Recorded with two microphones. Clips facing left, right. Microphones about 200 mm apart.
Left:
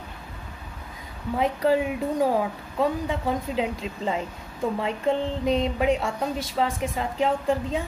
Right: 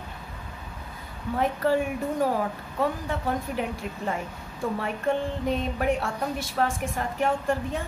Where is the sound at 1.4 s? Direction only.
15° left (ahead or behind).